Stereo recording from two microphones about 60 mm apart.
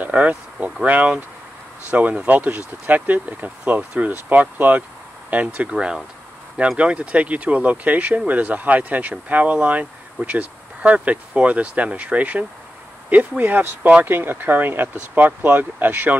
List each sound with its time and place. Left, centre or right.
0.0 s speech: right